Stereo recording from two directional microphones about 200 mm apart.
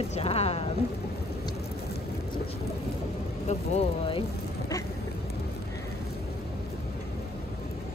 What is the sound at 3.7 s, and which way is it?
Speech, 25° left (ahead or behind).